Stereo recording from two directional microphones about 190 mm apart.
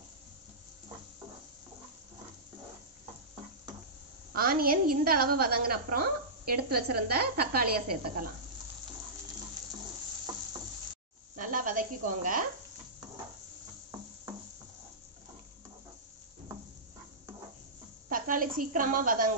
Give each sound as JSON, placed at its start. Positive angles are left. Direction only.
{"t": 4.3, "sound": "a woman's voice", "side_deg": -50}
{"t": 11.3, "sound": "a sound", "side_deg": -45}
{"t": 18.0, "sound": "a woman's voice", "side_deg": -45}